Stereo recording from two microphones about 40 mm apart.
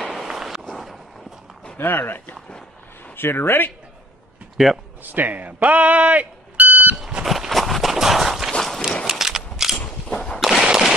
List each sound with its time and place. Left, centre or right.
0.0 s walk: centre
1.8 s a man's voice: left
4.6 s speech: centre
5.0 s speech: right
7.2 s a sound: centre
8.5 s run: centre
9.0 s a sound: centre
10.0 s a sound: centre
10.4 s fireworks: centre